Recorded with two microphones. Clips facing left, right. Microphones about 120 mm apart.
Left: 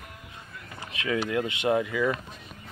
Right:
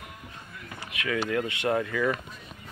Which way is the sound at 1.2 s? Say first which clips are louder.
Right 1 dB; 20° left (ahead or behind).